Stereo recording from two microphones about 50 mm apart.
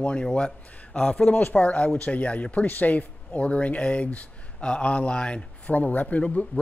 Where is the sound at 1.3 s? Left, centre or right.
Left.